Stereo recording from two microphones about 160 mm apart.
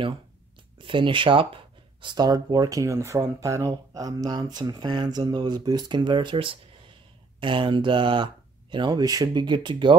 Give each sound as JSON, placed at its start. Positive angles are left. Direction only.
{"t": 0.7, "sound": "speech", "side_deg": -30}